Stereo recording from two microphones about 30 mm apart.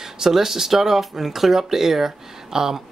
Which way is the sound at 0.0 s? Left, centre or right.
Centre.